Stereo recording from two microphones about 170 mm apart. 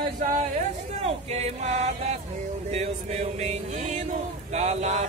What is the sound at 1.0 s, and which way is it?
Music, 40° right (ahead or behind).